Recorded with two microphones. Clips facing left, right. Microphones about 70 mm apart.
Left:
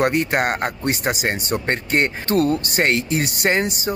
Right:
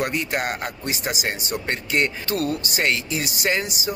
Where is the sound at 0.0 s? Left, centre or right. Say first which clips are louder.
Left 6 dB; left.